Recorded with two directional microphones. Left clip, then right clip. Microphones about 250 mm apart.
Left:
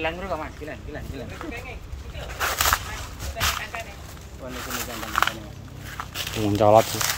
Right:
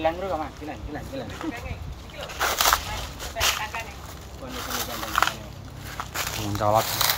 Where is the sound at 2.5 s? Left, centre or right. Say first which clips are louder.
Right 1 dB; right.